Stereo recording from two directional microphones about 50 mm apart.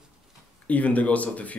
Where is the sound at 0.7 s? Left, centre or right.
Left.